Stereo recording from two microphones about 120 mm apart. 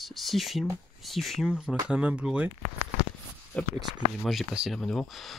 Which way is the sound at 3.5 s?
15° left (ahead or behind).